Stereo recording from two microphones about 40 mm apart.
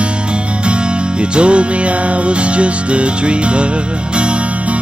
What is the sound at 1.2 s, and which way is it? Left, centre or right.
Music, right.